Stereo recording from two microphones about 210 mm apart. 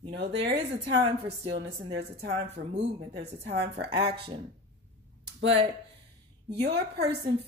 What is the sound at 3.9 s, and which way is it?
Speech, 25° right (ahead or behind).